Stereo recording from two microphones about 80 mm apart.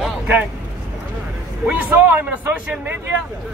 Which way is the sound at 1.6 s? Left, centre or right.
Right.